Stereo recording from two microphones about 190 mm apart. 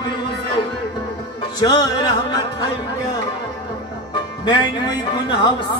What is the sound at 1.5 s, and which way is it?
Music, 20° left (ahead or behind).